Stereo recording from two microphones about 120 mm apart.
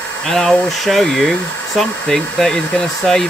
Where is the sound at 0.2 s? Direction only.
5° left (ahead or behind).